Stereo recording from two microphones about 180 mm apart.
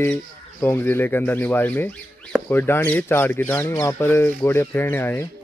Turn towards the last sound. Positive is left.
turn(degrees=10)  # may be behind; listen again after turning